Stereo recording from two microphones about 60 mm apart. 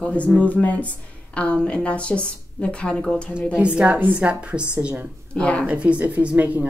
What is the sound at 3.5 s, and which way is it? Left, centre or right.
Speech, centre.